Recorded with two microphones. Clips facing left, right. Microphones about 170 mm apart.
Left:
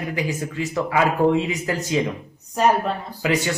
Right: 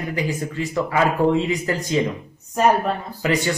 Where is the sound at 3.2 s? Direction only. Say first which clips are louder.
Even; 5° left (ahead or behind).